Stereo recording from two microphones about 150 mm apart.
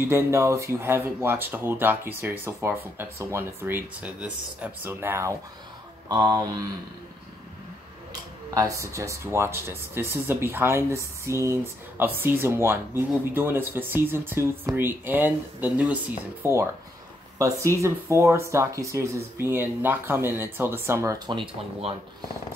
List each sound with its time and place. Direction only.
0.1 s speech: 20° right (ahead or behind)
6.0 s speech: 25° right (ahead or behind)
8.5 s speech: 20° right (ahead or behind)
21.3 s speech: 35° right (ahead or behind)